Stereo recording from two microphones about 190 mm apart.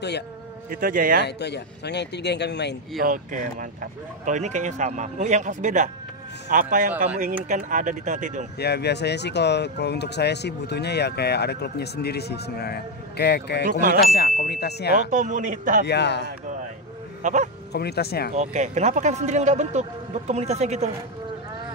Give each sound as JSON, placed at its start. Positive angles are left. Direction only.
{"t": 0.7, "sound": "speech", "side_deg": -50}
{"t": 1.2, "sound": "speech", "side_deg": 60}
{"t": 3.0, "sound": "speech", "side_deg": -45}
{"t": 8.5, "sound": "speech", "side_deg": 60}
{"t": 13.7, "sound": "speech", "side_deg": -45}
{"t": 14.1, "sound": "speech", "side_deg": 55}
{"t": 15.0, "sound": "speech", "side_deg": -40}
{"t": 15.8, "sound": "speech", "side_deg": 60}
{"t": 17.2, "sound": "speech", "side_deg": -40}
{"t": 17.7, "sound": "speech", "side_deg": 55}
{"t": 18.3, "sound": "speech", "side_deg": -35}